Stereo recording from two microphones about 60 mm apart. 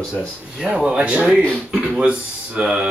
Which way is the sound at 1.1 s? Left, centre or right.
Centre.